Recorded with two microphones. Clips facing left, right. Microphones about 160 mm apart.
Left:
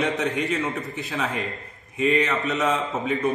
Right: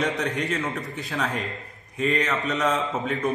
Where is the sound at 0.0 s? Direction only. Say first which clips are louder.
Left 2 dB; 5° left (ahead or behind).